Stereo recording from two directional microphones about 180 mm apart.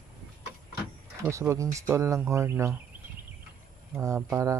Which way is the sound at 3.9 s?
15° right (ahead or behind).